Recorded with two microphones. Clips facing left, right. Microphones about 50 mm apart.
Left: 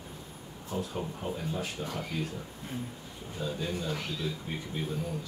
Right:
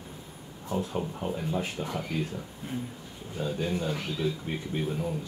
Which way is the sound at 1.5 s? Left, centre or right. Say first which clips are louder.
Right 4 dB; right.